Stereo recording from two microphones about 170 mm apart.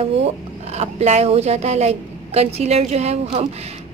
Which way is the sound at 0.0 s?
40° right (ahead or behind).